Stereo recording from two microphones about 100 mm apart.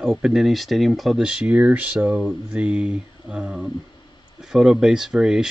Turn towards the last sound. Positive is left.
turn(degrees=-5)  # may be behind; listen again after turning